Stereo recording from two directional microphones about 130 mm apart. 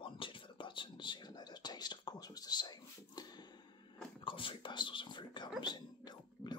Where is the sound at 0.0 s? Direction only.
40° left (ahead or behind).